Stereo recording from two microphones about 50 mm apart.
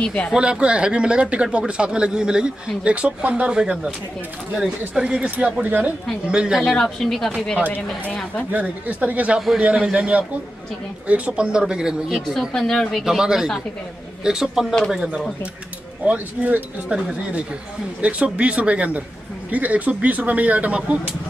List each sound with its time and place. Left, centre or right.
0.0 s speech: left
0.4 s speech: right
5.6 s speech: right
6.2 s speech: centre
6.7 s speech: centre
8.5 s speech: right; by 12.0 s centre
12.4 s speech: centre
13.0 s speech: centre
16.1 s speech: right
16.9 s speech: centre